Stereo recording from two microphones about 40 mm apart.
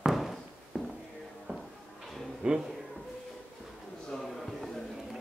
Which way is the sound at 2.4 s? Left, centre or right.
Right.